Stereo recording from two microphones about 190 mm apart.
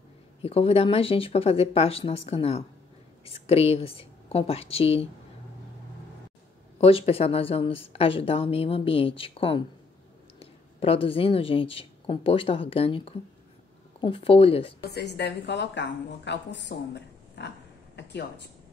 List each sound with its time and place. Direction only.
0.4 s speech: 30° left (ahead or behind)
6.8 s a woman's voice: 30° left (ahead or behind)
14.8 s a woman's voice: 60° left (ahead or behind)
18.0 s a sound: 65° left (ahead or behind)